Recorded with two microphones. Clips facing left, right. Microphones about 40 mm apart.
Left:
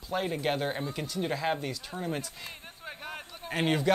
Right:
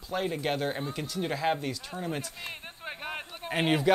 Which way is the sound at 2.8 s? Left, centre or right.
Right.